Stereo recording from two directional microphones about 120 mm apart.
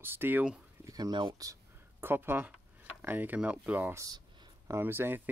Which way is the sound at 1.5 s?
20° right (ahead or behind).